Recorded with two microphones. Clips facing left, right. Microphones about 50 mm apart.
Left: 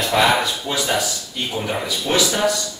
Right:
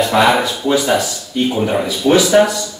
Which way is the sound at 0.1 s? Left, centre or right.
Centre.